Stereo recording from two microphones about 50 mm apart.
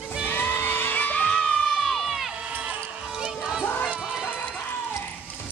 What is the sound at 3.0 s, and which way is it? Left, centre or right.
Music, centre.